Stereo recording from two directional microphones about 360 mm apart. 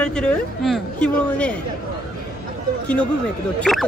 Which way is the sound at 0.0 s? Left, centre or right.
Centre.